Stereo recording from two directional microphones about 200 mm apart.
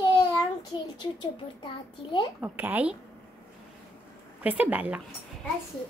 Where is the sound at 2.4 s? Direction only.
10° right (ahead or behind).